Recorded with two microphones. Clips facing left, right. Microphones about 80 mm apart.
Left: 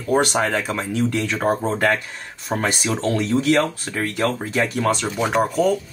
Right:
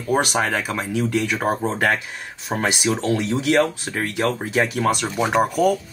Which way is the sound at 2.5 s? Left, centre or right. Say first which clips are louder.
Left 1 dB; centre.